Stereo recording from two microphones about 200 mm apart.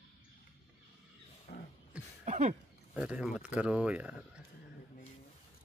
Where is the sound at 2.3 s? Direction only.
35° right (ahead or behind).